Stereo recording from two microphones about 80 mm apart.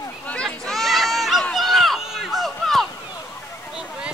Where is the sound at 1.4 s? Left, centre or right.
Centre.